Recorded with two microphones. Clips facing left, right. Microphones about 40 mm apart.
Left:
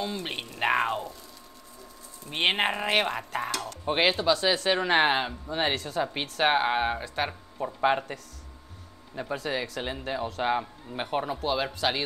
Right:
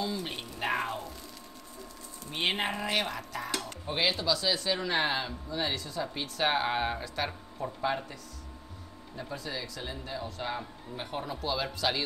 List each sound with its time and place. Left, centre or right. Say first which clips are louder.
0.0 s speech: left 2 dB; left
2.3 s speech: left 5 dB; left
6.4 s speech: left 5 dB; left
7.8 s speech: left 8 dB; left